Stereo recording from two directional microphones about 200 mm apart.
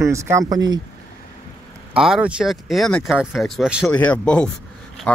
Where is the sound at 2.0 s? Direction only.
5° right (ahead or behind).